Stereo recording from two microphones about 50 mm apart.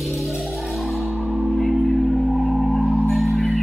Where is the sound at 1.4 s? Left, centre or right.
Centre.